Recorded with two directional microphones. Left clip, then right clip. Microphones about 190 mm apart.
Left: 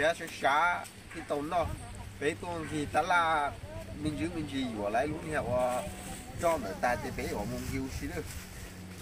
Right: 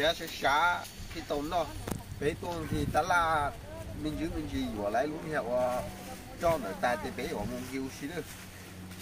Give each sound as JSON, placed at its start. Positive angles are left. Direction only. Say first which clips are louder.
{"t": 0.0, "sound": "speech", "louder": "even", "side_deg": 15}